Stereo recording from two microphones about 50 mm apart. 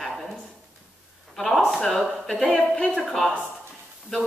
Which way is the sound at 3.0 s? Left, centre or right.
Centre.